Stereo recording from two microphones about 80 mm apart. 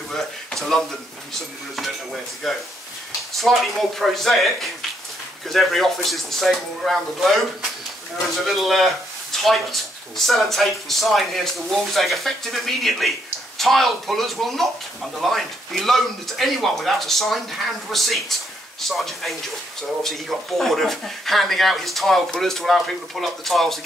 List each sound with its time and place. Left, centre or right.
0.1 s a sound: centre
2.4 s speech: centre
8.4 s speech: centre